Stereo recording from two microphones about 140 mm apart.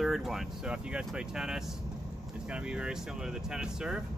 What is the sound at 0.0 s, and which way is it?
Speech, centre (ahead or behind).